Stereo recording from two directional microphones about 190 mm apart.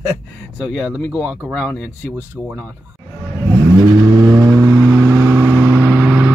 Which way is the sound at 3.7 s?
20° right (ahead or behind).